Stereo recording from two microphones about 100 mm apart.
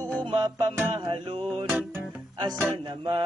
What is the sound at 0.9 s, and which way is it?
Music, 60° right (ahead or behind).